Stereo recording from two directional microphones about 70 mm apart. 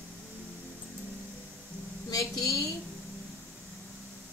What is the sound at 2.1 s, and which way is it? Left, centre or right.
Speech, left.